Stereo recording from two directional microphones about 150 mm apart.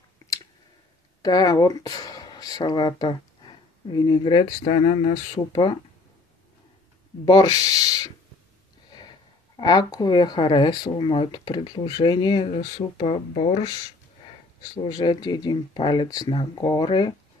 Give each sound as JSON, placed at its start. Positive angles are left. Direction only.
{"t": 1.2, "sound": "speech", "side_deg": 25}
{"t": 7.2, "sound": "speech", "side_deg": 25}
{"t": 9.6, "sound": "speech", "side_deg": 25}
{"t": 14.8, "sound": "speech", "side_deg": 30}